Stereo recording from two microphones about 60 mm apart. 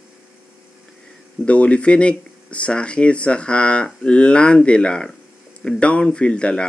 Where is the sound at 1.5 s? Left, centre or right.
Left.